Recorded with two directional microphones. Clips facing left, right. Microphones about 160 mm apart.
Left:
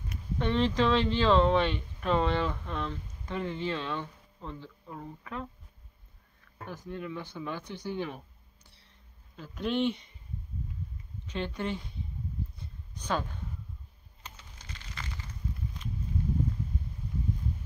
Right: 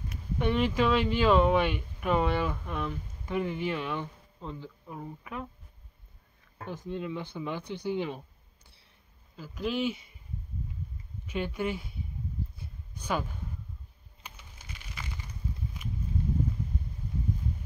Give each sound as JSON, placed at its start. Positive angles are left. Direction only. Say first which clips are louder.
{"t": 0.4, "sound": "speech", "louder": "even", "side_deg": -10}
{"t": 6.6, "sound": "speech", "louder": "right 3 dB", "side_deg": -20}
{"t": 9.4, "sound": "speech", "louder": "left 1 dB", "side_deg": -5}
{"t": 11.2, "sound": "speech", "louder": "right 2 dB", "side_deg": -10}
{"t": 12.5, "sound": "a sound", "louder": "right 1 dB", "side_deg": -10}